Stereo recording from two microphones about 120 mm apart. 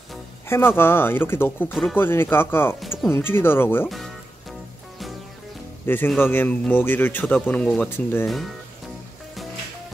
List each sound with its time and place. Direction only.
0.5 s speech: 20° left (ahead or behind)
1.7 s speech: centre (ahead or behind)
2.0 s speech: 20° left (ahead or behind)
5.9 s speech: 15° left (ahead or behind)